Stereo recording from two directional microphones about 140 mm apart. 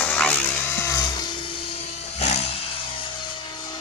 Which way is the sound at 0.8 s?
25° left (ahead or behind).